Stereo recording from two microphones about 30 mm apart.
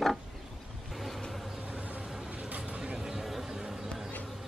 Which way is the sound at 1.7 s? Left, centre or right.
Right.